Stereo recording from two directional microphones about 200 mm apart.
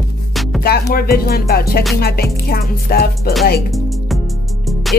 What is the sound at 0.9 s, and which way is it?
Speech, 50° left (ahead or behind).